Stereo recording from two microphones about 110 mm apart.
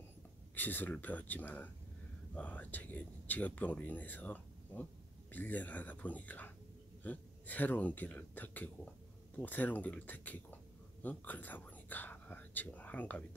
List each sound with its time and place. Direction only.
0.6 s speech: 15° left (ahead or behind)